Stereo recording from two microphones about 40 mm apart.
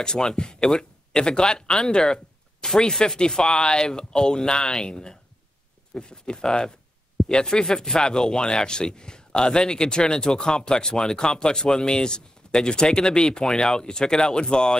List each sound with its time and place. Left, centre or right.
0.0 s speech: centre